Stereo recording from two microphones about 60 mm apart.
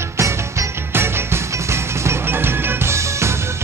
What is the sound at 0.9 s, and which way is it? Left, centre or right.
Music, right.